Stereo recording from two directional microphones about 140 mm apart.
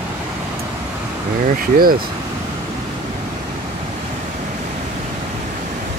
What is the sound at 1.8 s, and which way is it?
Speech, 90° right.